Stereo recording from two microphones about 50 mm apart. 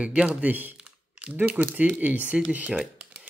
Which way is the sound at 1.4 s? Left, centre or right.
Right.